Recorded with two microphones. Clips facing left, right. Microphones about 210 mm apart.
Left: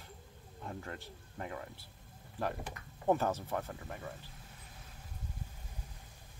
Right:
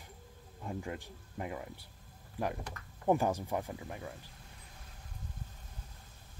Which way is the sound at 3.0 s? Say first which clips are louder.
Right 1 dB; 15° right (ahead or behind).